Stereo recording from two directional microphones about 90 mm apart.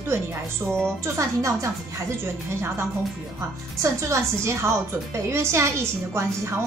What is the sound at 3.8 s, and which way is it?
A woman's voice, 35° right (ahead or behind).